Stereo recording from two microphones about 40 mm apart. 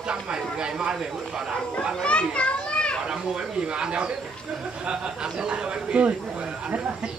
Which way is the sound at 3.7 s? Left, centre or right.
Right.